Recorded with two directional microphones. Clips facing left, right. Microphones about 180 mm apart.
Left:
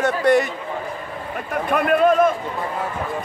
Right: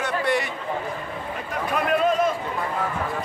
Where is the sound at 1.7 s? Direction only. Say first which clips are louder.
Left 5 dB; 55° left (ahead or behind).